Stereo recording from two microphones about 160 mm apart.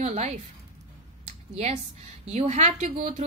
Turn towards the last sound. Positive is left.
turn(degrees=-45)  # may be behind; listen again after turning